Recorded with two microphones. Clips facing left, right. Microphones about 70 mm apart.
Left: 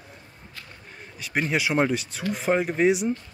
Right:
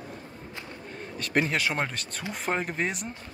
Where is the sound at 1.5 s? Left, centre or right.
Centre.